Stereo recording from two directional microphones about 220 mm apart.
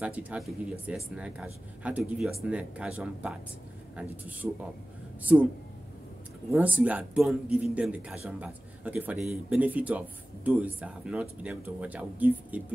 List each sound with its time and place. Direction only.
0.0 s a man's voice: 5° right (ahead or behind)
6.5 s a man's voice: 5° right (ahead or behind)